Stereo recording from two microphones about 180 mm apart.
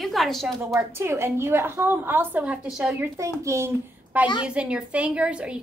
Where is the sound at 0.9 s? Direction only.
15° right (ahead or behind).